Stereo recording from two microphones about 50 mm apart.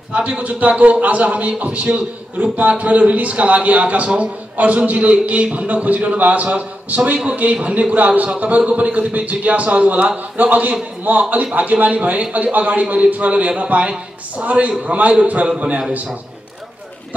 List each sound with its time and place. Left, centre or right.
0.1 s a man's voice: right
15.4 s a man's voice: centre